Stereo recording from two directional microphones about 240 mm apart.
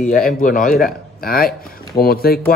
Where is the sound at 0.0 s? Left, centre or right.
Left.